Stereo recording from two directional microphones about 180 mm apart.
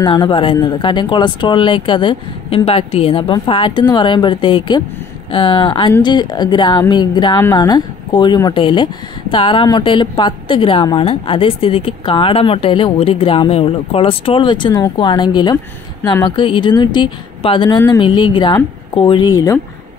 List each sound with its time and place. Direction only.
0.0 s speech: 25° left (ahead or behind)